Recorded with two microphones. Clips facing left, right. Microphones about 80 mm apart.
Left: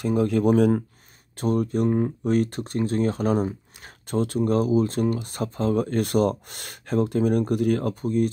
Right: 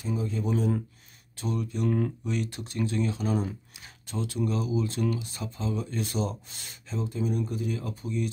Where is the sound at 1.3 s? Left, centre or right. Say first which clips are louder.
Left 9 dB; left.